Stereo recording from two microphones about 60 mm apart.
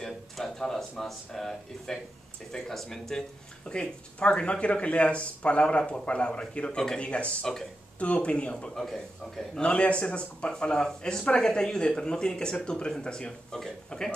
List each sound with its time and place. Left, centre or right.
0.0 s speech: centre
8.7 s a man's voice: centre
9.6 s speech: centre